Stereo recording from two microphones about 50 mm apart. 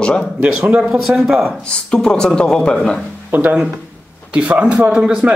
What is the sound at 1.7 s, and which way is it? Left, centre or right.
Speech, centre.